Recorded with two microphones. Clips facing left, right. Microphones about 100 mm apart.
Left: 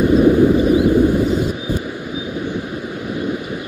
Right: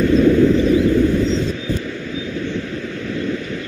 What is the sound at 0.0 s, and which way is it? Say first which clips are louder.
Vehicle: left 1 dB; 15° left (ahead or behind).